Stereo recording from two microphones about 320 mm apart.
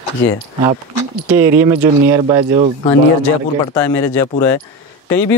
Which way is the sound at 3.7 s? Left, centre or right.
Centre.